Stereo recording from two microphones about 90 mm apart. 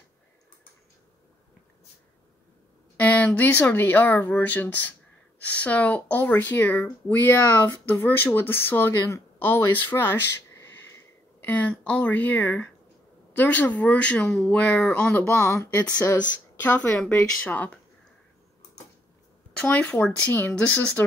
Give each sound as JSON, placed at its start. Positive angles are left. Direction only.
{"t": 3.0, "sound": "speech", "side_deg": 15}
{"t": 11.4, "sound": "speech", "side_deg": 15}
{"t": 15.4, "sound": "speech", "side_deg": 35}
{"t": 16.6, "sound": "speech", "side_deg": 15}
{"t": 19.6, "sound": "speech", "side_deg": 15}